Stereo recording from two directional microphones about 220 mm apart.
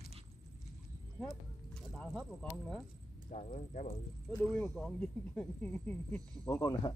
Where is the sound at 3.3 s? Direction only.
30° left (ahead or behind).